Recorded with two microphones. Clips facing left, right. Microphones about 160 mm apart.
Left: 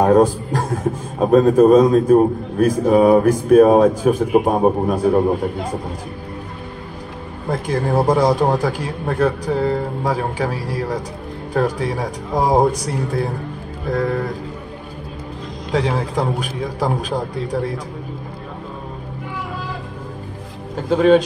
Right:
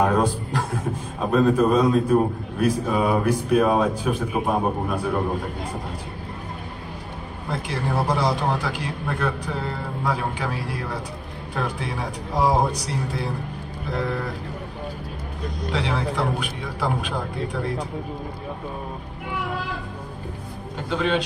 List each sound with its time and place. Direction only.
0.0 s a man's voice: 45° left (ahead or behind)
7.4 s speech: 45° left (ahead or behind)
15.7 s a man's voice: 40° left (ahead or behind)
20.9 s speech: 45° left (ahead or behind)